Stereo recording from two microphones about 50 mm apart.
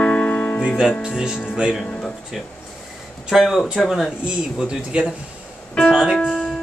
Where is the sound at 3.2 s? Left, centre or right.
Centre.